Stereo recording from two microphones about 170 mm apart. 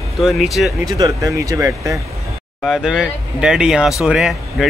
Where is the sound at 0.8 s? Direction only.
20° right (ahead or behind).